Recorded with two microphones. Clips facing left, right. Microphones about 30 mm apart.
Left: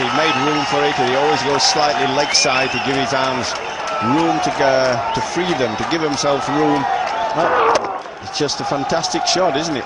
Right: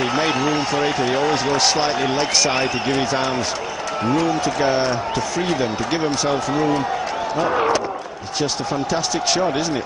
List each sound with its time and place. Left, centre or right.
0.0 s speech: centre
8.9 s speech: centre